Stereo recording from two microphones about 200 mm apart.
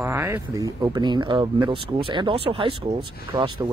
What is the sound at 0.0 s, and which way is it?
Speech, 15° right (ahead or behind).